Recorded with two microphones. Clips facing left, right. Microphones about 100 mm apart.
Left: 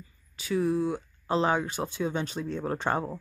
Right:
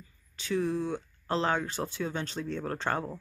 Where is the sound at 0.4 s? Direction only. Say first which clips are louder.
Left 3 dB; 5° left (ahead or behind).